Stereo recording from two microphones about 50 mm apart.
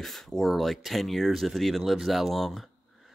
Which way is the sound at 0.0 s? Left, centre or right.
Centre.